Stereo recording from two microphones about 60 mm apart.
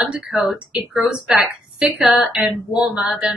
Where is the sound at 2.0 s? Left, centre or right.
Centre.